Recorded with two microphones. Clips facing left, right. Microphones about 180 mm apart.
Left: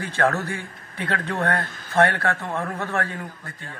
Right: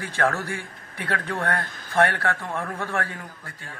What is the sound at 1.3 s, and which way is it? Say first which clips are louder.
A man's voice: left 4 dB; 15° left (ahead or behind).